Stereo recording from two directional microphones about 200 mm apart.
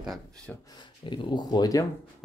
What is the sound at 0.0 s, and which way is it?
Speech, centre (ahead or behind).